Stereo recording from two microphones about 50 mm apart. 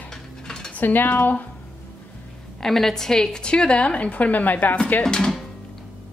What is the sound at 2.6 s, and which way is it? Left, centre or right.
A woman's voice, centre.